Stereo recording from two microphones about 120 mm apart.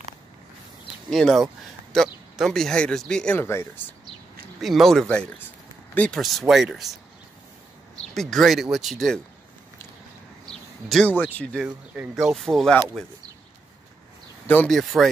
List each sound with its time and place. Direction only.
1.1 s speech: centre (ahead or behind)
3.3 s speech: 20° left (ahead or behind)
4.6 s speech: centre (ahead or behind)
5.0 s speech: 10° left (ahead or behind)
8.1 s speech: centre (ahead or behind)
10.9 s speech: centre (ahead or behind)
11.6 s speech: 10° right (ahead or behind)
14.7 s speech: centre (ahead or behind)